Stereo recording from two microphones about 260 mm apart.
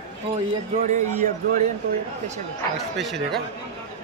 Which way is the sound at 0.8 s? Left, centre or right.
Right.